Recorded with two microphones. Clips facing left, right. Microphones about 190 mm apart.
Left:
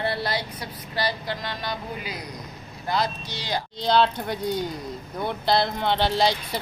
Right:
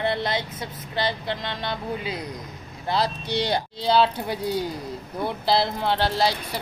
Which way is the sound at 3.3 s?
65° right (ahead or behind).